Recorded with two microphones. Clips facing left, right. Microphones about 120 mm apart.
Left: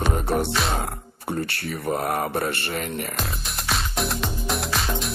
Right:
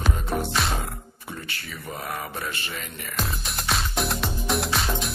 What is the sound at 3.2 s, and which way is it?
Music, centre (ahead or behind).